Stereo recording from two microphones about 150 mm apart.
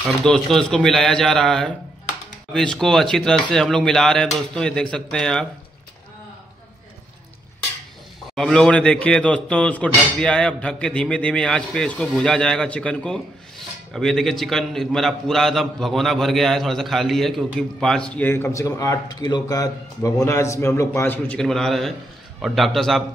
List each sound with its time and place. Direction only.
0.0 s a man's voice: 5° left (ahead or behind)
8.4 s a man's voice: 5° left (ahead or behind)